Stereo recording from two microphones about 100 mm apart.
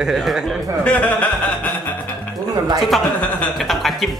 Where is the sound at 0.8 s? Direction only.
15° left (ahead or behind).